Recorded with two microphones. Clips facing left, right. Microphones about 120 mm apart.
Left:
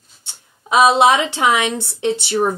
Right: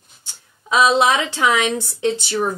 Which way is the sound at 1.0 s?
25° left (ahead or behind).